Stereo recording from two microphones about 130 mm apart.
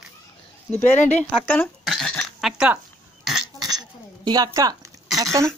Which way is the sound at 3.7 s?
30° right (ahead or behind).